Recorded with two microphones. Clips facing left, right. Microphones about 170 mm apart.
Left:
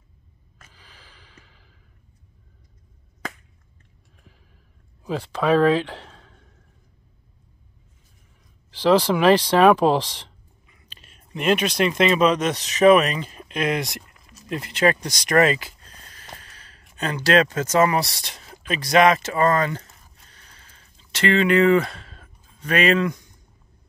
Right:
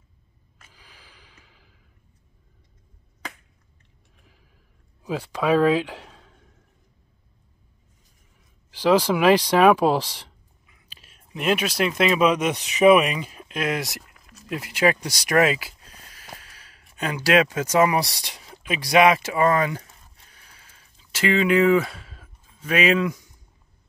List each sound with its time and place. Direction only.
0.7 s snort: 10° right (ahead or behind)
5.0 s speech: 10° right (ahead or behind)
8.6 s speech: 10° right (ahead or behind)
14.5 s speech: 10° right (ahead or behind)
20.2 s a sound: 10° right (ahead or behind)